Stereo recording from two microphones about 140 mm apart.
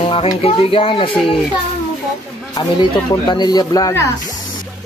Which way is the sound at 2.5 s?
30° left (ahead or behind).